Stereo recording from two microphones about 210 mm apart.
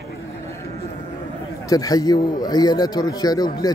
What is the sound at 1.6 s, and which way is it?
A man's voice, 15° left (ahead or behind).